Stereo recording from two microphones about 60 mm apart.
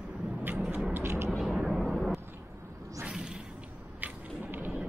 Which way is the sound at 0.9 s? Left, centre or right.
Right.